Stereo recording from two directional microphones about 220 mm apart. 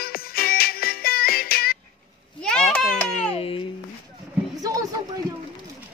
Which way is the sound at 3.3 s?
25° left (ahead or behind).